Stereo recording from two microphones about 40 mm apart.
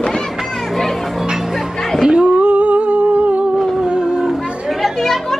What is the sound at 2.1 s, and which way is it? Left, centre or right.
Humming, right.